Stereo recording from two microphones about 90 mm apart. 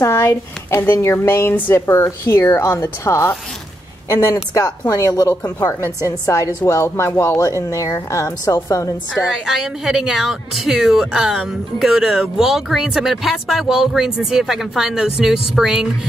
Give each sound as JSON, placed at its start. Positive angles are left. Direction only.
{"t": 0.0, "sound": "a woman's voice", "side_deg": 30}
{"t": 5.3, "sound": "speech", "side_deg": 20}
{"t": 6.0, "sound": "a woman's voice", "side_deg": 35}
{"t": 9.3, "sound": "a woman's voice", "side_deg": 0}